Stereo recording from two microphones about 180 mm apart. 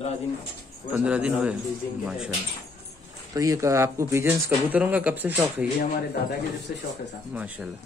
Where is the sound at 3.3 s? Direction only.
20° right (ahead or behind).